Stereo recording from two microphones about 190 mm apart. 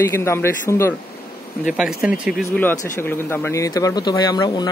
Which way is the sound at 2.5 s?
10° left (ahead or behind).